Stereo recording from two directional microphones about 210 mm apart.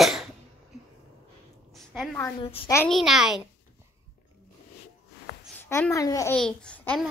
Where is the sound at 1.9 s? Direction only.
5° left (ahead or behind).